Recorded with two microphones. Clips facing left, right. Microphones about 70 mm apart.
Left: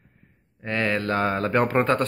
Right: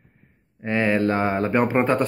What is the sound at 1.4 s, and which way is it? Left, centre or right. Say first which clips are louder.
Speech: right 1 dB; centre.